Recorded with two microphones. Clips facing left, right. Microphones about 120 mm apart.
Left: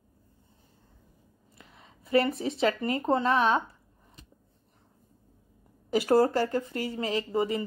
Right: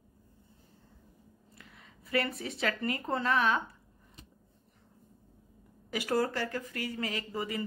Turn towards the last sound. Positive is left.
turn(degrees=25)  # may be behind; listen again after turning